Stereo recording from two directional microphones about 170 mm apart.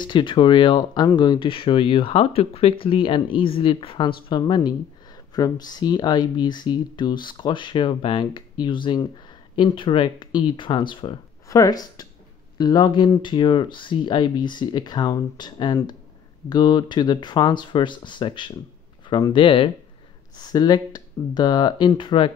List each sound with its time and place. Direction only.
0.0 s speech: 30° left (ahead or behind)